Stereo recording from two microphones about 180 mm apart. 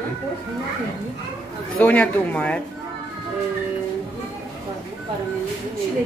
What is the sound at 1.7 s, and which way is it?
Speech, 5° left (ahead or behind).